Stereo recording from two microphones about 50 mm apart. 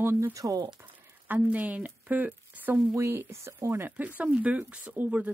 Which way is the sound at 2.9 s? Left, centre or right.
Right.